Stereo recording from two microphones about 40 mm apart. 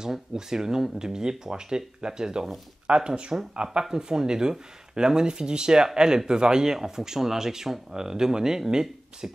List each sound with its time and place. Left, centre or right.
0.0 s speech: centre